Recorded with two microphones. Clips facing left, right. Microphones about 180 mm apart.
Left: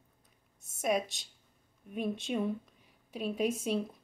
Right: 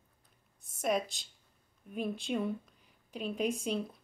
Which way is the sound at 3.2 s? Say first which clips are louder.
Left 2 dB; 5° left (ahead or behind).